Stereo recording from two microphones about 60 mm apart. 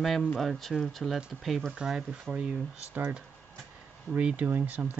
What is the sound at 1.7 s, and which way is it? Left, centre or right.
Speech, centre.